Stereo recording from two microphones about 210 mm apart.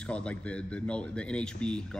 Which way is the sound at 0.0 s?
5° left (ahead or behind).